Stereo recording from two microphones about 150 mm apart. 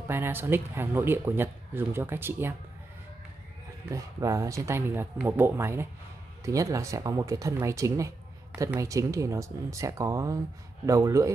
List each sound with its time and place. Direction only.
0.1 s speech: 15° right (ahead or behind)
3.9 s speech: 20° right (ahead or behind)